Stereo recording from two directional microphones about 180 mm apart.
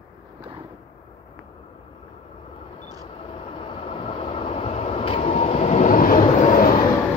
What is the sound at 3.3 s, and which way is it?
Vehicle, 30° left (ahead or behind).